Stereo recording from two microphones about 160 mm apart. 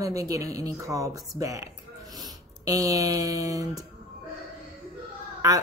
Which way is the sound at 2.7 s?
20° right (ahead or behind).